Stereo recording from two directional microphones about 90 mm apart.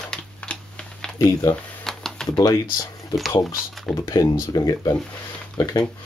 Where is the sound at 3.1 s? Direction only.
45° left (ahead or behind).